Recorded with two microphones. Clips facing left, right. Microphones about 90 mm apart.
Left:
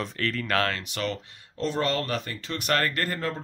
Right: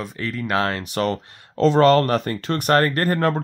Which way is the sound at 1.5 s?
85° right.